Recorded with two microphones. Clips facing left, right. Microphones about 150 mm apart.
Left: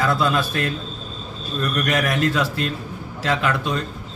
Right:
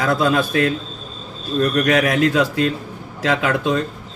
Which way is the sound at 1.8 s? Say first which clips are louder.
Right 5 dB; 65° right (ahead or behind).